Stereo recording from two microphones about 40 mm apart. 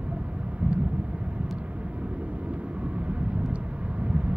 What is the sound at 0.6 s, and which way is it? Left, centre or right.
Vehicle, right.